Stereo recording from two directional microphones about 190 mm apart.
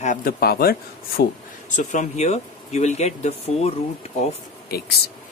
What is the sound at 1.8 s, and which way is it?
Speech, 40° left (ahead or behind).